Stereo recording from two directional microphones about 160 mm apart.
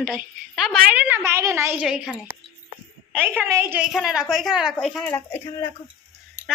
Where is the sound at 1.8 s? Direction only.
5° right (ahead or behind).